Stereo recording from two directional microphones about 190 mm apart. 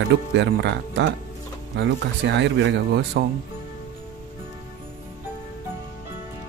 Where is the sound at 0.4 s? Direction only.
70° right (ahead or behind).